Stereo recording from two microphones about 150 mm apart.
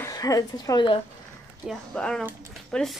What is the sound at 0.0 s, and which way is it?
A woman's voice, 20° left (ahead or behind).